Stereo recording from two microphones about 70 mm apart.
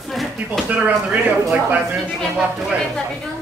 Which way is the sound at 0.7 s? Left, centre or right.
Right.